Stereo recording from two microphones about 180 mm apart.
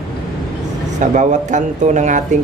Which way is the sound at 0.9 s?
45° right (ahead or behind).